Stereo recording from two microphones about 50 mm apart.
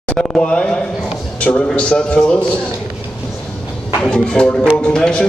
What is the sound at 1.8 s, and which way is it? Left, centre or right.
Speech, left.